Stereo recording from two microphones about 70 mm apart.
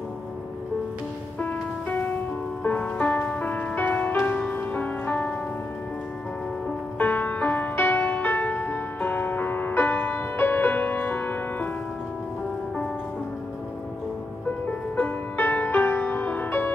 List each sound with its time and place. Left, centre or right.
1.4 s music: left
7.0 s music: left
15.0 s music: left